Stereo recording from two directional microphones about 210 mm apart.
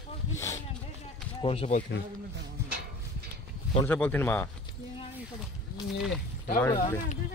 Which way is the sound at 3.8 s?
10° left (ahead or behind).